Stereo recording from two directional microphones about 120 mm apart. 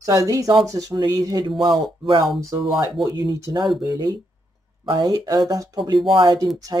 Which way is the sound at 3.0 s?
30° right (ahead or behind).